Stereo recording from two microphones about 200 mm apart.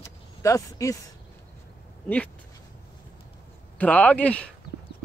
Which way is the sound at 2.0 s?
10° left (ahead or behind).